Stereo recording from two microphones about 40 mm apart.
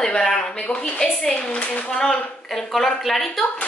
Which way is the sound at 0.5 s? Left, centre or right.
Left.